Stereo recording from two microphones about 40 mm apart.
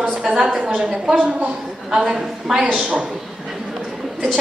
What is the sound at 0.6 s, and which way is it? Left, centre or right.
A woman's voice, right.